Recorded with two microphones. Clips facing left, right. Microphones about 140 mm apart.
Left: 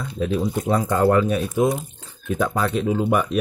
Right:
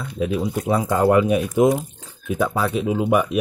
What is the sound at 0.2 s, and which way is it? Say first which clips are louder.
Speech: even; 10° right (ahead or behind).